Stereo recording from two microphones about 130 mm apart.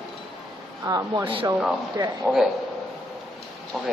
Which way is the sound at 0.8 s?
25° right (ahead or behind).